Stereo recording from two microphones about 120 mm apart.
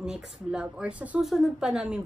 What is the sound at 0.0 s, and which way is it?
A woman's voice, 5° right (ahead or behind).